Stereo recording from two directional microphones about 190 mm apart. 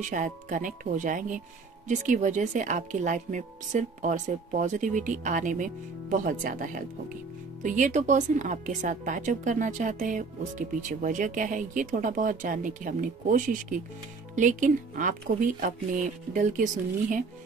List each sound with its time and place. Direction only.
0.0 s a woman's voice: 45° right (ahead or behind)